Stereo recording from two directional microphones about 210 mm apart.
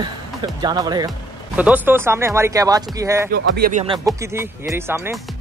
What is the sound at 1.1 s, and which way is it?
Speech, 5° right (ahead or behind).